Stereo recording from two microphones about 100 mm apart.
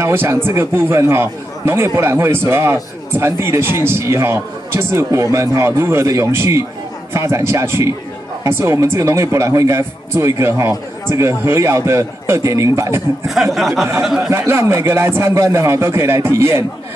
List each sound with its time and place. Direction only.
0.0 s a man's voice: 25° right (ahead or behind)
13.3 s speech: centre (ahead or behind)
14.3 s a man's voice: 25° right (ahead or behind)